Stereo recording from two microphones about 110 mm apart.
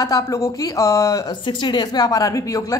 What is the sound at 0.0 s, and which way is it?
A woman's voice, 30° left (ahead or behind).